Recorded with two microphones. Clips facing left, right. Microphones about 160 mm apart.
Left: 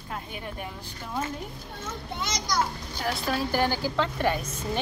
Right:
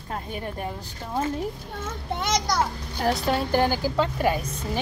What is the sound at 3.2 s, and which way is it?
Speech, 30° right (ahead or behind).